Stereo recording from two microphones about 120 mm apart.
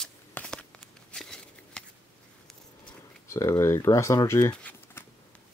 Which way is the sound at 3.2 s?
25° left (ahead or behind).